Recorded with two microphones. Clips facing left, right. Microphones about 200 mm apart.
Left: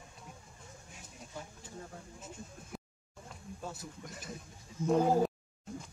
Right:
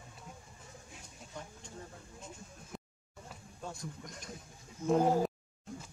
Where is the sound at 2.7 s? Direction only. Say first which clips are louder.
Left 1 dB; 5° left (ahead or behind).